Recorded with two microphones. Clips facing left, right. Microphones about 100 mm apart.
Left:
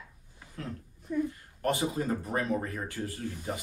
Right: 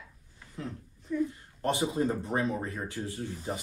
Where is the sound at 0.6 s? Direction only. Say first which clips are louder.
Right 1 dB; 20° right (ahead or behind).